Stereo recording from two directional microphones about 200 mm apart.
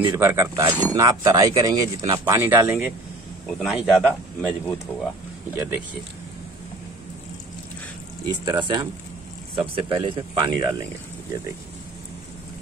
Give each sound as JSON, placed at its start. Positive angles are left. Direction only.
{"t": 0.0, "sound": "speech", "side_deg": -10}
{"t": 3.6, "sound": "speech", "side_deg": 0}
{"t": 8.3, "sound": "speech", "side_deg": -20}